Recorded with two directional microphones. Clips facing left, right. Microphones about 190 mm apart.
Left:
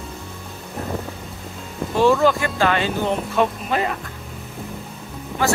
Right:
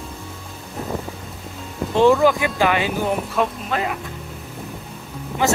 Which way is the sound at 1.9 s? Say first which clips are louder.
Right 2 dB; 15° right (ahead or behind).